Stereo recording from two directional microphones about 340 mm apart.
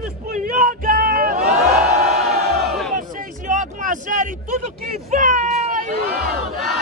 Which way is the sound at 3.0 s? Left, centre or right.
Right.